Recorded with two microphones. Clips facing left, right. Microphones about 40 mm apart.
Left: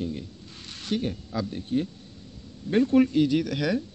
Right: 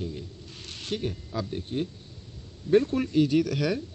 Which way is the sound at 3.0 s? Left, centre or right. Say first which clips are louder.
Even; centre.